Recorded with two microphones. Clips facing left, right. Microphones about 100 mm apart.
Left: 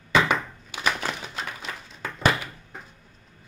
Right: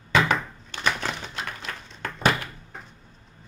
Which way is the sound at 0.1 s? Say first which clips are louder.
Even; 5° left (ahead or behind).